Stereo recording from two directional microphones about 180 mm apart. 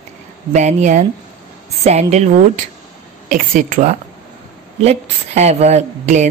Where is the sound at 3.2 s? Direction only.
50° right (ahead or behind).